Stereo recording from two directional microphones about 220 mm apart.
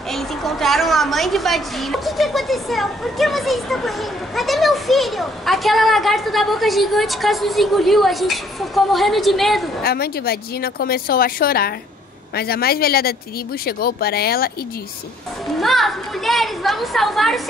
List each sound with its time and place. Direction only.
0.1 s a woman's voice: centre (ahead or behind)
9.8 s speech: 45° left (ahead or behind)
15.6 s a woman's voice: centre (ahead or behind)